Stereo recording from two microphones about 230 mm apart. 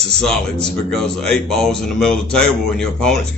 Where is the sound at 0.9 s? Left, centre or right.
Centre.